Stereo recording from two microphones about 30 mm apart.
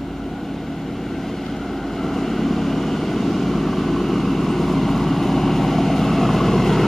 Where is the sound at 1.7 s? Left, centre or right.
Centre.